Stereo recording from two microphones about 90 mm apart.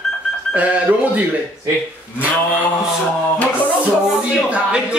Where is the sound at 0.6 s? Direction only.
15° right (ahead or behind).